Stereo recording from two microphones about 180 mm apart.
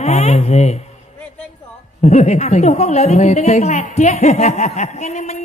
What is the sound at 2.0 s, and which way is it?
A woman's voice, 40° left (ahead or behind).